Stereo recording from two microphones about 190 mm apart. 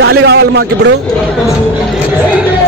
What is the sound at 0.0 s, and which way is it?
Speech, 60° right (ahead or behind).